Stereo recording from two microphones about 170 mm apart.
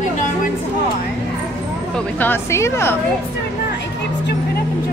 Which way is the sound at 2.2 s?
15° left (ahead or behind).